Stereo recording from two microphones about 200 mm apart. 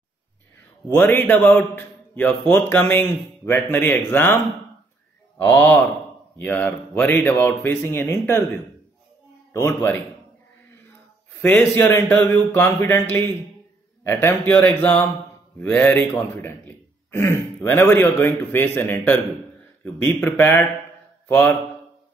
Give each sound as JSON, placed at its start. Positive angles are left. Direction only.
{"t": 0.8, "sound": "a man's voice", "side_deg": 10}
{"t": 5.5, "sound": "a man's voice", "side_deg": 10}
{"t": 9.5, "sound": "a man's voice", "side_deg": 15}
{"t": 11.4, "sound": "a man's voice", "side_deg": 10}
{"t": 14.0, "sound": "a man's voice", "side_deg": 10}